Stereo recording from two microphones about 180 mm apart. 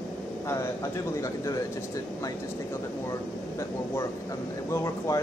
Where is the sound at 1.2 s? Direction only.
15° left (ahead or behind).